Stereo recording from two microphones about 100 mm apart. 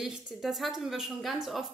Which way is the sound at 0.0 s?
5° right (ahead or behind).